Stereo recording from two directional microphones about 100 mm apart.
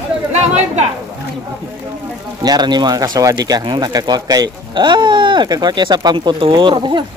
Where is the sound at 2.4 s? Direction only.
45° right (ahead or behind).